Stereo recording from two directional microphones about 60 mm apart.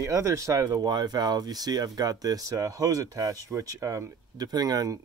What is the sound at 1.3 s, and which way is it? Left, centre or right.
Speech, right.